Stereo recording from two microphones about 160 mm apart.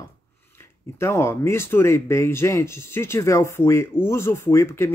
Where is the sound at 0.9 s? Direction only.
15° left (ahead or behind).